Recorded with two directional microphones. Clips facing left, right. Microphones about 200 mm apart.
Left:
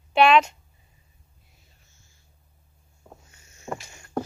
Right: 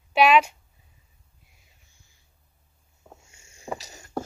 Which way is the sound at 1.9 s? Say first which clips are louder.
Left 1 dB; 15° right (ahead or behind).